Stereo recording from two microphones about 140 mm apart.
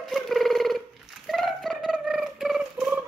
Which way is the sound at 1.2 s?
Centre (ahead or behind).